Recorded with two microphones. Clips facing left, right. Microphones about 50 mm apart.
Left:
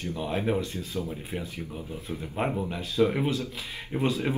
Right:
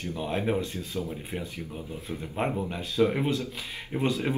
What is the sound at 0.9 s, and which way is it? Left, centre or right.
Speech, centre.